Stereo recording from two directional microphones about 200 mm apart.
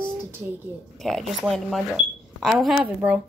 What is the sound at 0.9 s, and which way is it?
Speech, centre (ahead or behind).